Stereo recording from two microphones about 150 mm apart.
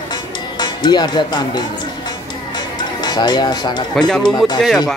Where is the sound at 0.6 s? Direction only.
30° left (ahead or behind).